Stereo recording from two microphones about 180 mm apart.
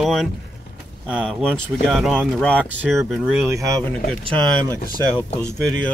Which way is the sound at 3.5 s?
20° right (ahead or behind).